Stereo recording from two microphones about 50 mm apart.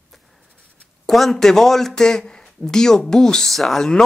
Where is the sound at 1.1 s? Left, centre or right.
Centre.